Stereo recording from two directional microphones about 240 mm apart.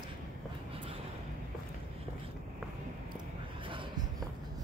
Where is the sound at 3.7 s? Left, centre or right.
Right.